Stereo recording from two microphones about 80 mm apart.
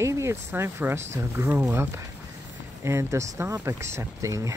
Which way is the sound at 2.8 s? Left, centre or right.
Right.